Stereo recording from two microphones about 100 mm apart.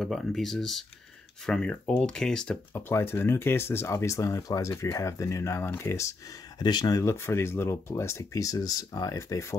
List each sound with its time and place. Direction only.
0.0 s speech: centre (ahead or behind)
2.7 s speech: 25° left (ahead or behind)
6.6 s speech: 45° left (ahead or behind)
7.0 s speech: 30° left (ahead or behind)